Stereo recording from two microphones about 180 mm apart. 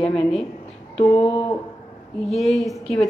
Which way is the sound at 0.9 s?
35° left (ahead or behind).